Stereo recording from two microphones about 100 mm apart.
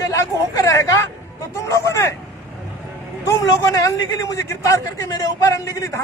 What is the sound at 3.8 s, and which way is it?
Speech, 30° left (ahead or behind).